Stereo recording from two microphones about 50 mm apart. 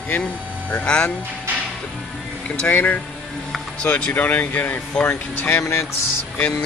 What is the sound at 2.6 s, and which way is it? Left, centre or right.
Speech, left.